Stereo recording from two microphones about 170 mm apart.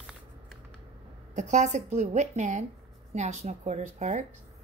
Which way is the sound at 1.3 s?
45° right (ahead or behind).